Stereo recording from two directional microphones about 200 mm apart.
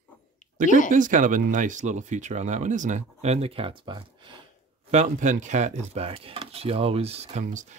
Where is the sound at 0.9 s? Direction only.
40° right (ahead or behind); by 4.4 s 25° right (ahead or behind).